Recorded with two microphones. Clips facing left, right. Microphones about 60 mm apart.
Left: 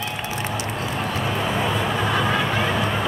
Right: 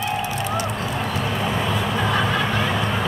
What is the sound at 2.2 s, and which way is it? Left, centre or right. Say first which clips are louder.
Music: even; centre.